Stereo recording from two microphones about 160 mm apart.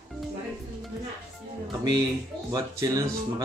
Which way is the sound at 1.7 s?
25° right (ahead or behind).